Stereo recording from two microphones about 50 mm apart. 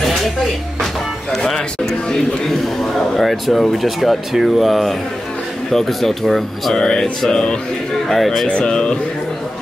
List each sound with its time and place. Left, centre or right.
1.4 s a man's voice: centre
8.5 s speech: left